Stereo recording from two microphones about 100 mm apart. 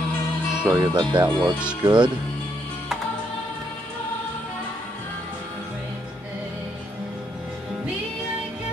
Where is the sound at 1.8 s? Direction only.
45° right (ahead or behind).